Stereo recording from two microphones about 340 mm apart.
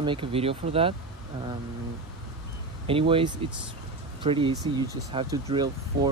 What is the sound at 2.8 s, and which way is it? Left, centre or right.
Speech, centre.